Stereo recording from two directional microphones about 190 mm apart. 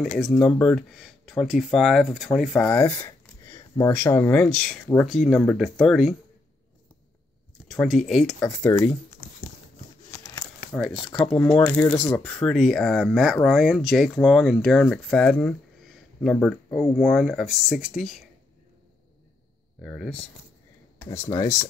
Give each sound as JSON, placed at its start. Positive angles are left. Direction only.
{"t": 0.0, "sound": "speech", "side_deg": 0}
{"t": 2.8, "sound": "speech", "side_deg": 15}
{"t": 7.6, "sound": "speech", "side_deg": 0}
{"t": 8.4, "sound": "speech", "side_deg": 15}
{"t": 10.9, "sound": "speech", "side_deg": 30}
{"t": 11.7, "sound": "speech", "side_deg": 5}
{"t": 19.8, "sound": "speech", "side_deg": 0}